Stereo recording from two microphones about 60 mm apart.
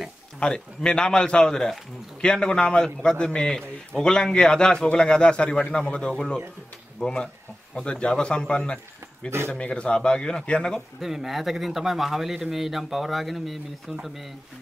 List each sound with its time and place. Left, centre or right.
0.4 s a man's voice: centre
11.0 s a man's voice: centre